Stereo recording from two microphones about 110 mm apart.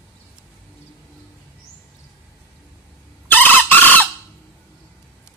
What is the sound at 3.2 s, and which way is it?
Chicken, 15° left (ahead or behind).